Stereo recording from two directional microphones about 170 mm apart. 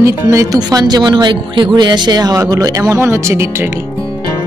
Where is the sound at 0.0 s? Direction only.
15° right (ahead or behind).